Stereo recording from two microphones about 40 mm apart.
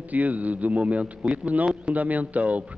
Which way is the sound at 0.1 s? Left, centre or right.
Right.